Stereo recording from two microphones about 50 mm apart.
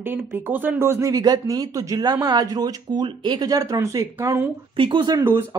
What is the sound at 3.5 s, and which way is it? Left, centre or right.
Speech, right.